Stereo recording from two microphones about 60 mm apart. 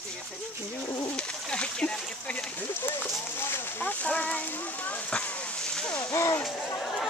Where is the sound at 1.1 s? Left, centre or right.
Centre.